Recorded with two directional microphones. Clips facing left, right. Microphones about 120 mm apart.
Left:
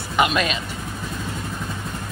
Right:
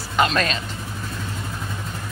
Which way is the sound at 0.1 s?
15° left (ahead or behind).